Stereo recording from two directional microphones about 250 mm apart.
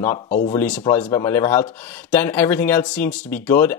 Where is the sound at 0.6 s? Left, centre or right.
Centre.